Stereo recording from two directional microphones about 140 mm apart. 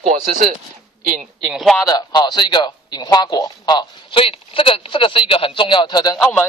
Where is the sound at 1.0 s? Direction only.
75° right (ahead or behind).